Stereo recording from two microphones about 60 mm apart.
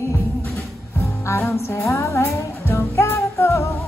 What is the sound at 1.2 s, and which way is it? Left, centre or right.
Music, left.